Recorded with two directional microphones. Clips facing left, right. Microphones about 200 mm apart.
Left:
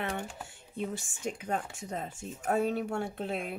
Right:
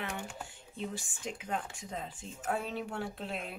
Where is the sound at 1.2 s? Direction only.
45° left (ahead or behind).